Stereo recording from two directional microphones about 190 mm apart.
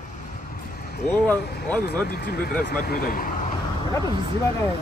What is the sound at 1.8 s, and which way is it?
Speech, 55° left (ahead or behind).